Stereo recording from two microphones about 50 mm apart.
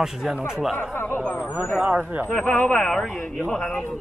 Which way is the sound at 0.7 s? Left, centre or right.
Left.